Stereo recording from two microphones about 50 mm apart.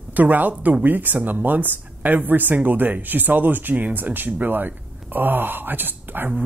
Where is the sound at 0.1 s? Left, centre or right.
Right.